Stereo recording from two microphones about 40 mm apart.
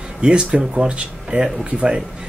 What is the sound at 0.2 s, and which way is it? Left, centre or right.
Speech, right.